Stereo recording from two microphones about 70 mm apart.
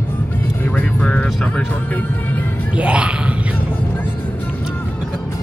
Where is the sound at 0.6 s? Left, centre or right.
Left.